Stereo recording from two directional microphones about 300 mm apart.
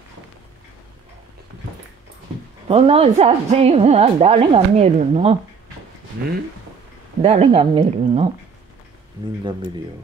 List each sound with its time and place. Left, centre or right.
2.7 s a woman's voice: centre
7.2 s a woman's voice: centre